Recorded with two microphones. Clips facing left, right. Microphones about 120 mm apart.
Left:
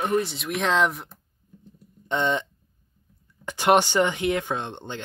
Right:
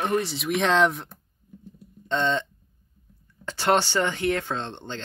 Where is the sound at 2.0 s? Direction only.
15° left (ahead or behind).